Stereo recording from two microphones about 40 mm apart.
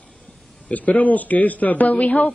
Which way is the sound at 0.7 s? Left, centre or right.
Left.